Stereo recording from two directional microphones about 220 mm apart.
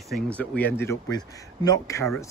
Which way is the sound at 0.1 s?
5° left (ahead or behind).